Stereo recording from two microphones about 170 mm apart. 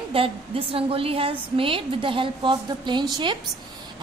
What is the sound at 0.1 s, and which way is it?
A woman's voice, 35° right (ahead or behind).